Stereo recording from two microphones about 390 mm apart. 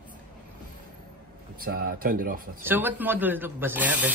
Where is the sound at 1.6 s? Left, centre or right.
Right.